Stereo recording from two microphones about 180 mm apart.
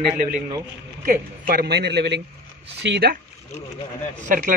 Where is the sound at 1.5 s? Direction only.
60° right (ahead or behind).